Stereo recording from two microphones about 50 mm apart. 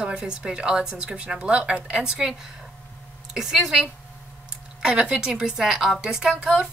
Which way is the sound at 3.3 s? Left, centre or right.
Centre.